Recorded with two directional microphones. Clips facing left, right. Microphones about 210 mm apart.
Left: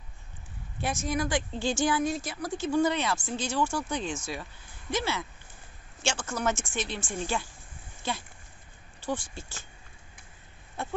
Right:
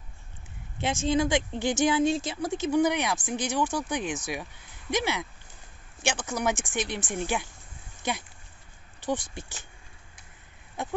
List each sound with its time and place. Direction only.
0.7 s speech: 25° right (ahead or behind)
10.8 s speech: 15° right (ahead or behind)